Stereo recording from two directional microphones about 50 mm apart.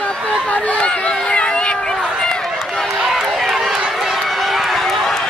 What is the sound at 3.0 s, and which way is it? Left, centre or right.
Run, centre.